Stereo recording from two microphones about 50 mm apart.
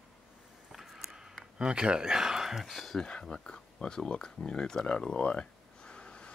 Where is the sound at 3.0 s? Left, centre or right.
Centre.